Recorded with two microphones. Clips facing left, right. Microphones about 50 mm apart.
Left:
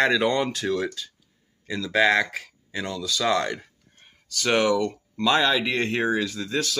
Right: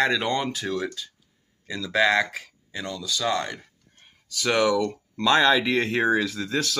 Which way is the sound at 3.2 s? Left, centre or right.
Left.